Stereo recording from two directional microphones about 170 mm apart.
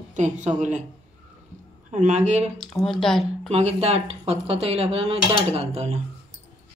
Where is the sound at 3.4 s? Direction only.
40° right (ahead or behind).